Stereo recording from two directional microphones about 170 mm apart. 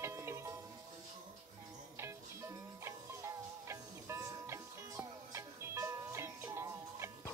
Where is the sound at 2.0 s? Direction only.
15° right (ahead or behind).